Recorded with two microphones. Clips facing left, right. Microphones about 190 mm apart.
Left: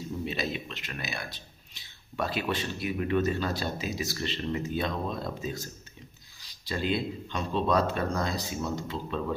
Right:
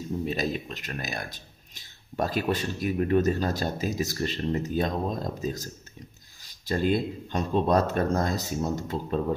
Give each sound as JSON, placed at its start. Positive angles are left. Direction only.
{"t": 0.2, "sound": "speech", "side_deg": -45}